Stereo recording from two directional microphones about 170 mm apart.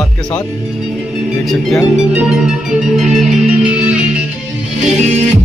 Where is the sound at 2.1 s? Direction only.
5° right (ahead or behind).